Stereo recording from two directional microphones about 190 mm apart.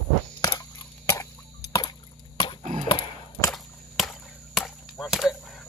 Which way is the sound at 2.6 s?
40° right (ahead or behind).